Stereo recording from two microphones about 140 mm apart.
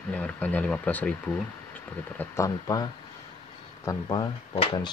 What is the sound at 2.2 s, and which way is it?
Speech, 20° left (ahead or behind).